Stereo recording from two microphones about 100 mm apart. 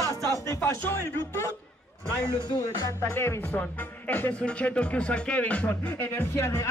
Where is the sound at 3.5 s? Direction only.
15° left (ahead or behind).